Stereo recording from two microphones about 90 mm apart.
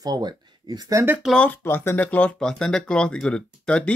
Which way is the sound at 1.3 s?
15° left (ahead or behind).